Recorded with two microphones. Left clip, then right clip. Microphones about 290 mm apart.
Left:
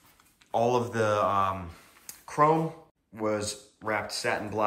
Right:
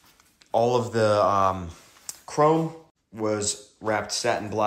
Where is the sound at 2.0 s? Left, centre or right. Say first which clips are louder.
Right 3 dB; centre.